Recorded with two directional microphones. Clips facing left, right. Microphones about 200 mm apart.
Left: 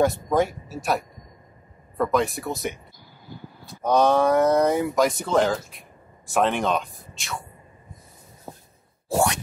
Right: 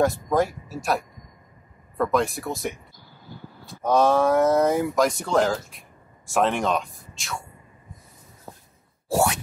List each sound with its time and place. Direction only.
0.0 s speech: centre (ahead or behind)
8.5 s a sound: 15° left (ahead or behind)
9.1 s plop: 5° right (ahead or behind)